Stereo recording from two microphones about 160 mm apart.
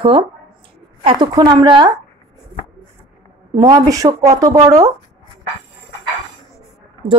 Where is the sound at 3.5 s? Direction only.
20° right (ahead or behind).